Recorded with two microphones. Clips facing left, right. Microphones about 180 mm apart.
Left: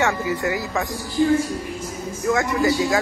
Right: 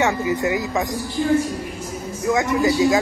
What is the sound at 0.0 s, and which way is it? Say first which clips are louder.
Speech: right 2 dB; 20° right (ahead or behind).